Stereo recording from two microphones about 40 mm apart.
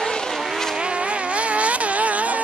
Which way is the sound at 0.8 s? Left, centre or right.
Right.